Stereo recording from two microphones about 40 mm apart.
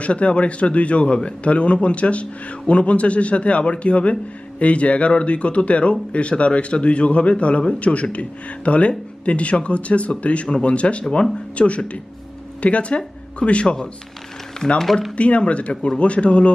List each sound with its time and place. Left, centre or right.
0.0 s a man's voice: left
14.6 s speech: centre
15.1 s a man's voice: left